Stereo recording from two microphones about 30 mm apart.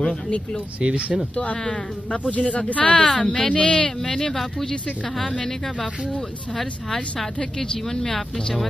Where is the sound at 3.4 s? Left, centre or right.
Left.